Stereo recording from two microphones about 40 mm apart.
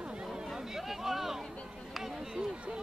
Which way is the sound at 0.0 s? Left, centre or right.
Right.